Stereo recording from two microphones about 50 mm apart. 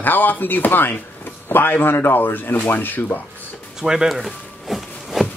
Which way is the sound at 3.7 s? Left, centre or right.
Centre.